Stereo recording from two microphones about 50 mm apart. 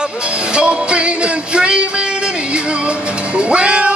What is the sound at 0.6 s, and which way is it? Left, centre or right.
Music, right.